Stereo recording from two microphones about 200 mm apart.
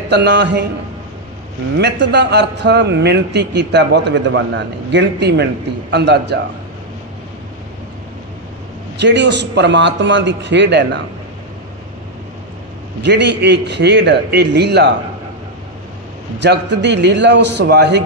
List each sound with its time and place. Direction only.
0.1 s a man's voice: 60° right (ahead or behind)
1.8 s a man's voice: 60° right (ahead or behind)
9.0 s a man's voice: 60° right (ahead or behind)
13.0 s a man's voice: 60° right (ahead or behind)
16.3 s a man's voice: 60° right (ahead or behind)